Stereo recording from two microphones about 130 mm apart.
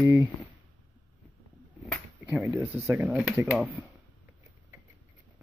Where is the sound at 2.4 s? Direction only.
20° right (ahead or behind).